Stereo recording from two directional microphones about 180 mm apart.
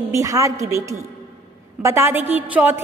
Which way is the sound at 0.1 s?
20° right (ahead or behind).